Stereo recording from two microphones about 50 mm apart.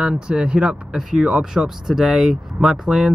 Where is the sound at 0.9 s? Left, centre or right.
Centre.